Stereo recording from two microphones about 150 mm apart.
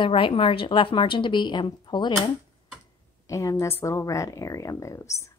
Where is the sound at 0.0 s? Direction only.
35° left (ahead or behind).